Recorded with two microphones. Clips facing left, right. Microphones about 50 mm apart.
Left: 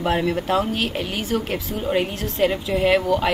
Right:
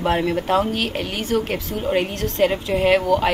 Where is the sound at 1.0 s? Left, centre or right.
Centre.